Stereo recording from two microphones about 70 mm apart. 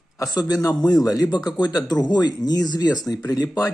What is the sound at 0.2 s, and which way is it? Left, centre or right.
Speech, left.